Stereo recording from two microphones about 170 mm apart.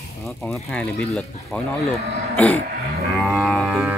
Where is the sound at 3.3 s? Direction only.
Centre (ahead or behind).